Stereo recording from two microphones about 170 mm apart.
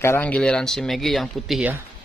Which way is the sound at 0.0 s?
10° left (ahead or behind).